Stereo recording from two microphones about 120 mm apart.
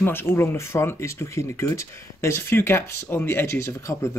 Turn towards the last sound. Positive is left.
turn(degrees=20)  # may be behind; listen again after turning